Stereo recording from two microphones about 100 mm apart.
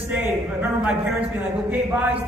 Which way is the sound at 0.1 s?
15° right (ahead or behind).